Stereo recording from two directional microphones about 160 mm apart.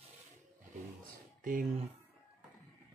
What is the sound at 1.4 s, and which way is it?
Speech, 55° right (ahead or behind).